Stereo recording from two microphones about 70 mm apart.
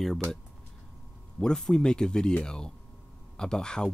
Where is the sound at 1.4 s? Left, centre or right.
Centre.